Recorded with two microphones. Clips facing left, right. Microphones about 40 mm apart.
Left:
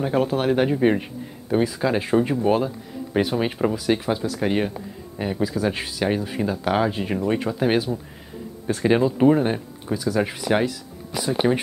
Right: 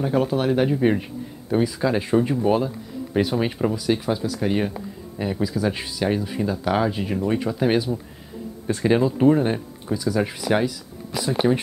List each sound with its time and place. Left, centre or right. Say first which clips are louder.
0.0 s speech: even; centre